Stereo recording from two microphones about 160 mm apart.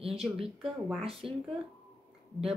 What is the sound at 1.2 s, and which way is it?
Speech, centre (ahead or behind).